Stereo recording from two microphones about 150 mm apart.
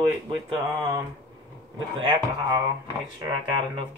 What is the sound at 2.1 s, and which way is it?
Speech, 30° right (ahead or behind).